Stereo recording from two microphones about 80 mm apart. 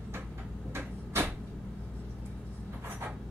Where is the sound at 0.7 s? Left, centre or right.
Right.